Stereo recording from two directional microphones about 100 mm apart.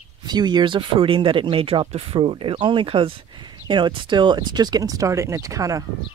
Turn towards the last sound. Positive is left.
turn(degrees=-35)  # may be behind; listen again after turning